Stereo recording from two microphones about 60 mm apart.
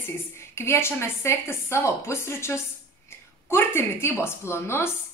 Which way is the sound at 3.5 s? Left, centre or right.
Left.